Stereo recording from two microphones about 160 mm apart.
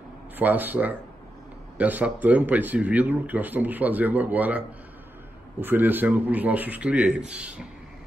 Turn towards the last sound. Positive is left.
turn(degrees=-5)  # may be behind; listen again after turning